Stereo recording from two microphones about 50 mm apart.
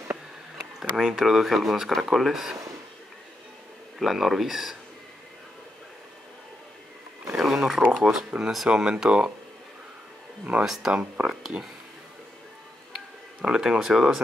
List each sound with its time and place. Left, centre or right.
0.6 s a sound: centre
1.0 s speech: centre
4.0 s speech: centre
7.2 s a sound: centre
7.9 s speech: centre
8.6 s speech: centre
10.6 s speech: centre
11.2 s speech: right
12.9 s speech: centre